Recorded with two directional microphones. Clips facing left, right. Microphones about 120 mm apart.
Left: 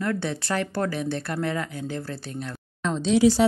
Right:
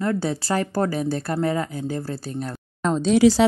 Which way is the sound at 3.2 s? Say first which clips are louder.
Right 3 dB; 90° right.